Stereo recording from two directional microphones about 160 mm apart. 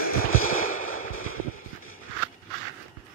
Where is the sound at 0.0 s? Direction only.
65° left (ahead or behind).